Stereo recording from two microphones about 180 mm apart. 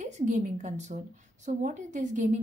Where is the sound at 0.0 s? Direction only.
45° right (ahead or behind).